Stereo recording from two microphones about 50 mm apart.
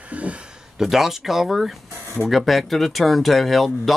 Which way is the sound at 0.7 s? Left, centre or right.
Centre.